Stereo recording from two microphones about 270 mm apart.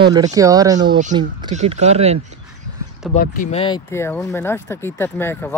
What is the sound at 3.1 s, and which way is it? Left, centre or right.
Speech, left.